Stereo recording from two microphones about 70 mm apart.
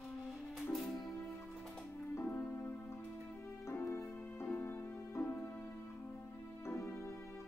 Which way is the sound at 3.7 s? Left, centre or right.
Left.